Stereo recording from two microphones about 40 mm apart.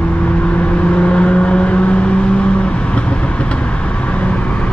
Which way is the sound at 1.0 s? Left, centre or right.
Left.